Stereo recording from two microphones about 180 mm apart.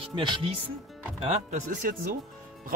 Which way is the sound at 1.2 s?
40° right (ahead or behind).